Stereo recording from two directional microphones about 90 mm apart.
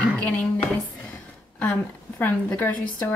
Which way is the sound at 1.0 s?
15° left (ahead or behind).